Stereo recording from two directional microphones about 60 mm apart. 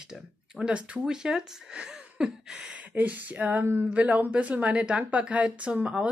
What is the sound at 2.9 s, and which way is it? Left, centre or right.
A woman's voice, right.